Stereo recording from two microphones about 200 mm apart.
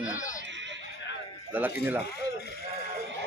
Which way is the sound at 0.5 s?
65° right (ahead or behind).